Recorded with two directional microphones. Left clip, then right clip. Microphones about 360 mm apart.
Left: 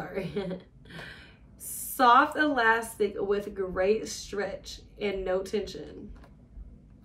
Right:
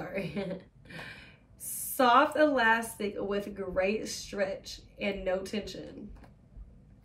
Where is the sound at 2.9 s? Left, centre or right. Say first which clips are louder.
Left 5 dB; left.